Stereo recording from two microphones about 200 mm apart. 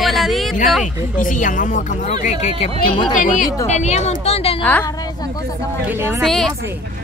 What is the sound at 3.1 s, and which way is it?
Speech, 40° left (ahead or behind).